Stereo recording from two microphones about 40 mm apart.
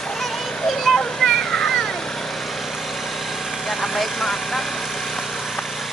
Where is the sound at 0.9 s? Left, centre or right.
Centre.